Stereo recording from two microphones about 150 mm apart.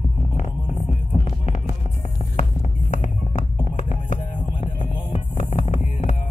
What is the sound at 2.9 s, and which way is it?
Music, 50° left (ahead or behind).